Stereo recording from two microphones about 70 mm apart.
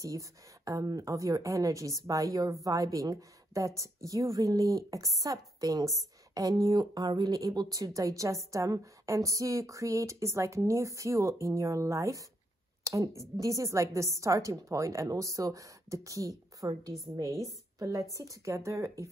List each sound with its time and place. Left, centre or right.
0.0 s a woman's voice: right
7.5 s a woman's voice: right